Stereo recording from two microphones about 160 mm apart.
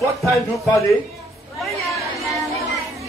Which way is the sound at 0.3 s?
20° left (ahead or behind).